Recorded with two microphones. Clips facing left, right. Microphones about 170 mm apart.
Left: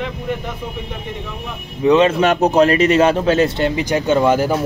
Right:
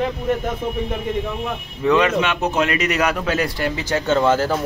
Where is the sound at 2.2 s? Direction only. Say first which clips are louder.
Left 7 dB; 40° left (ahead or behind); by 4.6 s 15° left (ahead or behind).